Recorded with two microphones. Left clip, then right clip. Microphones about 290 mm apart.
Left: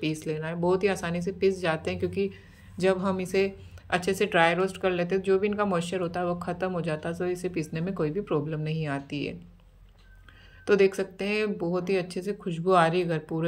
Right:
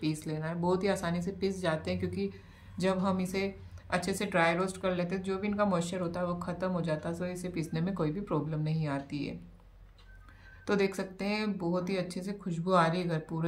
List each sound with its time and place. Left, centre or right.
0.0 s speech: centre
10.6 s speech: centre